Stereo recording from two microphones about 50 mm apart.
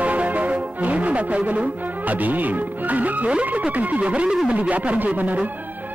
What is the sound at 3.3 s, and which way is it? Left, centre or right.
Speech, right.